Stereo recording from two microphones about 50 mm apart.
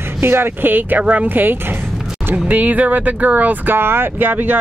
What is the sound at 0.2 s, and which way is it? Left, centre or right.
Speech, right.